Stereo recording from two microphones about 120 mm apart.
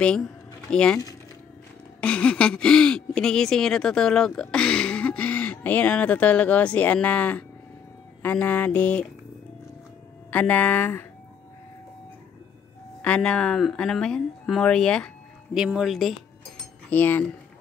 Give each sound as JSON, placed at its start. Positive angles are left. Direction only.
{"t": 0.0, "sound": "speech", "side_deg": 5}
{"t": 2.0, "sound": "speech", "side_deg": 10}
{"t": 10.3, "sound": "speech", "side_deg": 15}
{"t": 13.0, "sound": "speech", "side_deg": 10}
{"t": 15.5, "sound": "speech", "side_deg": -5}
{"t": 16.9, "sound": "speech", "side_deg": 15}